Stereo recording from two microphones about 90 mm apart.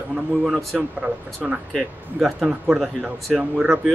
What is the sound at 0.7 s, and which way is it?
Speech, 15° right (ahead or behind).